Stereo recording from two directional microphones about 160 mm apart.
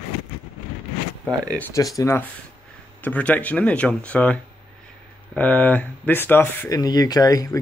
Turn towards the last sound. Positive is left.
turn(degrees=20)  # may be behind; listen again after turning